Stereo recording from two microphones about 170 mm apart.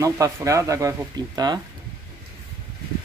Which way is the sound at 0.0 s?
20° right (ahead or behind).